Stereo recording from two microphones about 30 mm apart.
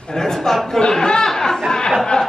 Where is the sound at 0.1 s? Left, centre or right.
Centre.